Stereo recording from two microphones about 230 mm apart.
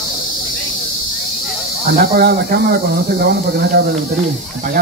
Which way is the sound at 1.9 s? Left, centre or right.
Right.